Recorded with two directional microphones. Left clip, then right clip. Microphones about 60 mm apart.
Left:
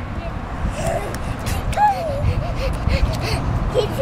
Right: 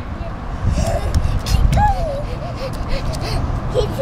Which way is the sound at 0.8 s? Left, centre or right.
Centre.